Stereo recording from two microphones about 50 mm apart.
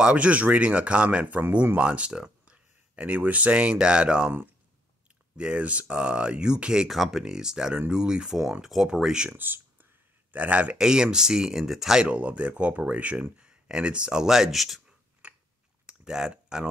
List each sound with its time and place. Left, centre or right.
0.0 s speech: right
5.4 s speech: right
9.4 s a sound: right
10.3 s speech: right
10.8 s speech: centre
12.0 s speech: right; by 14.8 s centre
15.2 s biting: right
15.9 s a sound: centre